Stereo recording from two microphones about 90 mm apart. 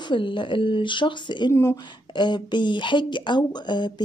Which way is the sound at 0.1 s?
65° left (ahead or behind).